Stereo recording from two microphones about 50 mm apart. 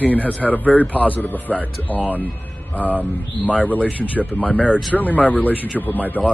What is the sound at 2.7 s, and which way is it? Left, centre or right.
Speech, left.